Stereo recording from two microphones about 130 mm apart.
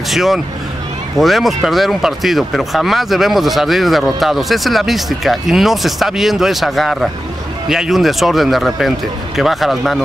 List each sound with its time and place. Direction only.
0.1 s speech: centre (ahead or behind)